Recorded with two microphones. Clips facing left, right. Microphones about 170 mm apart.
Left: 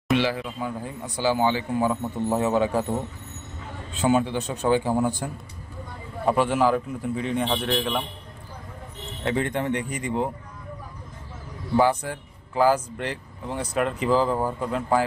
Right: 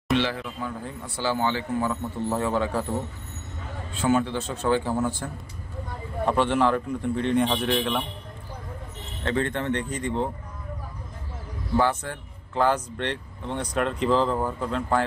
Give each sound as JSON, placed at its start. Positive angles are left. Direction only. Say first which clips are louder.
{"t": 0.1, "sound": "speech", "louder": "left 2 dB", "side_deg": 10}
{"t": 3.9, "sound": "a man's voice", "louder": "left 1 dB", "side_deg": 20}
{"t": 9.2, "sound": "speech", "louder": "left 1 dB", "side_deg": 15}
{"t": 11.7, "sound": "speech", "louder": "left 3 dB", "side_deg": 15}